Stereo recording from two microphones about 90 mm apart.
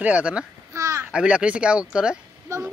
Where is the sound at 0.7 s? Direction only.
35° right (ahead or behind).